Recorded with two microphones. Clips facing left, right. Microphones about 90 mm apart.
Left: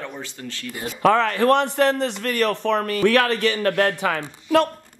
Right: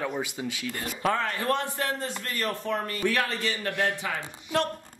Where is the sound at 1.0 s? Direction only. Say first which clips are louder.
Left 10 dB; 90° left; by 4.6 s 70° left (ahead or behind).